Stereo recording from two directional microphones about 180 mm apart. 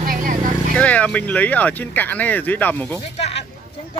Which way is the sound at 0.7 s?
10° left (ahead or behind).